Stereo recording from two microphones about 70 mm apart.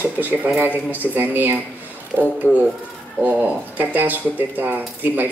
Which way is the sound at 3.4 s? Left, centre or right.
Right.